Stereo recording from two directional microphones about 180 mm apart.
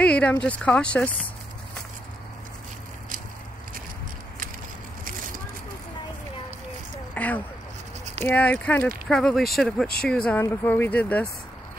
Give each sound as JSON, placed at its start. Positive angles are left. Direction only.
{"t": 0.0, "sound": "speech", "side_deg": 5}
{"t": 5.0, "sound": "vehicle", "side_deg": -50}
{"t": 7.2, "sound": "speech", "side_deg": 10}